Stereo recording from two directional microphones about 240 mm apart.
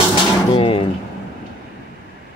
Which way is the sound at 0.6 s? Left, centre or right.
Left.